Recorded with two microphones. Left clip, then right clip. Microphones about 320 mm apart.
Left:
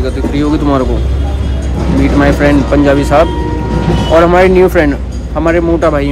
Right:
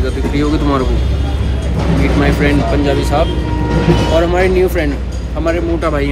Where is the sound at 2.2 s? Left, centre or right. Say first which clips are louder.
Left 6 dB; centre.